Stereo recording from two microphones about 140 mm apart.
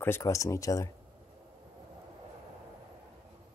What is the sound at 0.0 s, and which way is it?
Speech, 20° left (ahead or behind).